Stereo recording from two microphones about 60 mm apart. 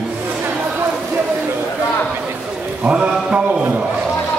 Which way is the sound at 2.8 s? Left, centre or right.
Centre.